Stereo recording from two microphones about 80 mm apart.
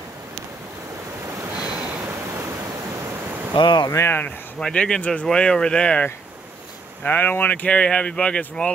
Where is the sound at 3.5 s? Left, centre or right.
Left.